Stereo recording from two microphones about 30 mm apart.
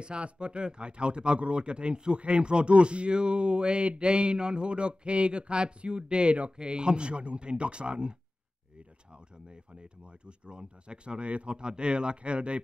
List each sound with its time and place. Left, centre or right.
0.0 s speech: right
11.5 s speech: right